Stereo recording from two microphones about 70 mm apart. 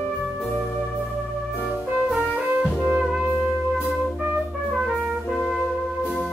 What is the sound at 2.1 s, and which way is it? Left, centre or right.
Music, right.